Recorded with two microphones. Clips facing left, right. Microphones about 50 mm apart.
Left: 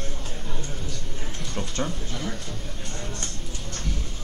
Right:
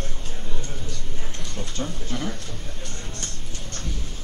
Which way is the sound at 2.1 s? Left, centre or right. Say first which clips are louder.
Right 4 dB; right.